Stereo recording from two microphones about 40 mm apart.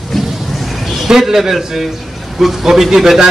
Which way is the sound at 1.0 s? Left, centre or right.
Centre.